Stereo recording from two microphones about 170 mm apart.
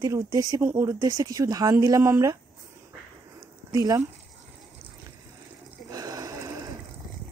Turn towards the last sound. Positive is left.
turn(degrees=-20)  # may be behind; listen again after turning